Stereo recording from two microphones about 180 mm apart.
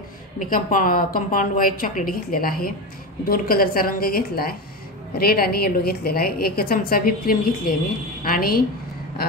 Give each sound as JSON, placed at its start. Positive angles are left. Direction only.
{"t": 0.4, "sound": "a woman's voice", "side_deg": 50}